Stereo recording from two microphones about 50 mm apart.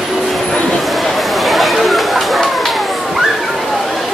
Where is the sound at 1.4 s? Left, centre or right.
Centre.